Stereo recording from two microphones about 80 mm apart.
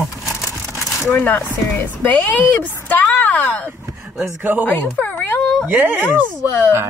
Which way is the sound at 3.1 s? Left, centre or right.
Left.